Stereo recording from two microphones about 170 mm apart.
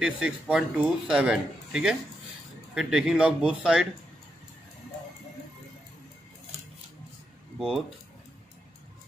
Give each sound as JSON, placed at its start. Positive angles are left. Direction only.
{"t": 0.0, "sound": "a man's voice", "side_deg": -5}
{"t": 7.5, "sound": "speech", "side_deg": -5}